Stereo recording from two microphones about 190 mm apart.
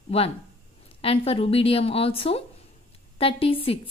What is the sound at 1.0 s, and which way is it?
A woman's voice, 30° left (ahead or behind).